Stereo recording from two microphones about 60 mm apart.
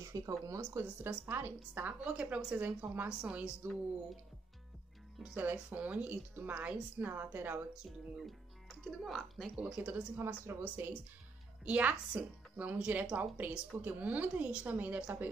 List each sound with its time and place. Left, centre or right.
0.0 s speech: right
0.6 s a woman's voice: right
1.0 s a woman's voice: right
1.7 s speech: right
2.5 s a woman's voice: right
3.2 s speech: centre
3.6 s a woman's voice: right
5.2 s speech: right
7.1 s a woman's voice: right
8.2 s speech: centre
9.6 s speech: centre
10.1 s a woman's voice: right
10.6 s speech: right